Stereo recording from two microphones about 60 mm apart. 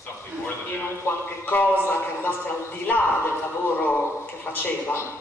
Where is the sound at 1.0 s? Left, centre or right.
Left.